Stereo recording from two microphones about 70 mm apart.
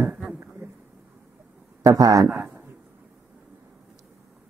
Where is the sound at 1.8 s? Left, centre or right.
Right.